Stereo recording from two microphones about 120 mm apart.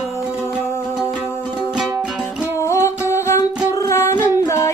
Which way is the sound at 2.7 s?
25° left (ahead or behind).